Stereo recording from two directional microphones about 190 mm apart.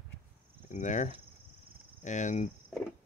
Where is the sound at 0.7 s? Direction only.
40° left (ahead or behind).